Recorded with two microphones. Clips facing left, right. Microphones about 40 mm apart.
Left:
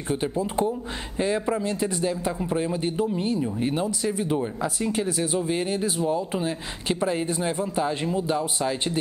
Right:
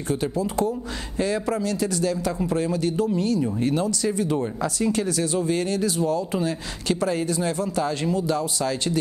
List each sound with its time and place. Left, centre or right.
0.1 s speech: left